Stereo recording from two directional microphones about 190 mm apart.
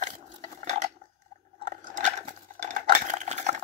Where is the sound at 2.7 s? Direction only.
40° right (ahead or behind).